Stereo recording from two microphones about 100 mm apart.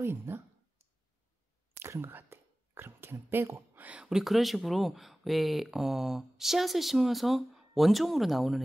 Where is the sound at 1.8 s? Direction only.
25° right (ahead or behind).